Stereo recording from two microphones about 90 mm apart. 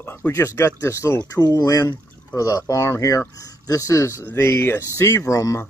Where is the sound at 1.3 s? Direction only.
45° left (ahead or behind); by 4.9 s 25° left (ahead or behind).